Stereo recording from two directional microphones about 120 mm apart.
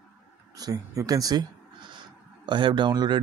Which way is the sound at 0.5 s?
30° right (ahead or behind).